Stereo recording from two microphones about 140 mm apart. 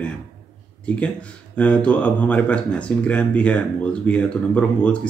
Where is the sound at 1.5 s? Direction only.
10° left (ahead or behind).